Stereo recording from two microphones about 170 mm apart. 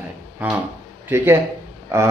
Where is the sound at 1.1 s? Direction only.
15° right (ahead or behind).